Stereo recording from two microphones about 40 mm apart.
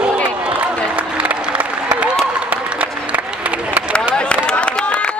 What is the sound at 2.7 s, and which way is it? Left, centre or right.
Applause, right.